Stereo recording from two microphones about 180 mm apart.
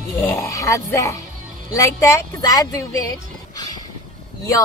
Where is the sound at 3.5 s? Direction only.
20° left (ahead or behind).